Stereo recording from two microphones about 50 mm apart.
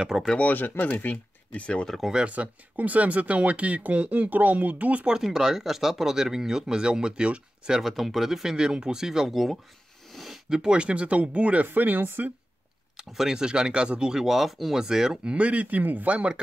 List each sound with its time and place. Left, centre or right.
0.4 s speech: left
2.2 s speech: right
5.1 s speech: centre
7.8 s speech: centre
10.1 s a sound: centre
10.6 s speech: centre
11.6 s speech: right
12.9 s speech: centre
15.3 s speech: right